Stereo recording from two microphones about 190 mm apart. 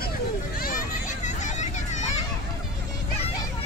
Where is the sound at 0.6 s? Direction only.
50° left (ahead or behind).